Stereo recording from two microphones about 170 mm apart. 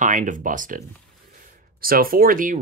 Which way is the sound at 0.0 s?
50° right (ahead or behind).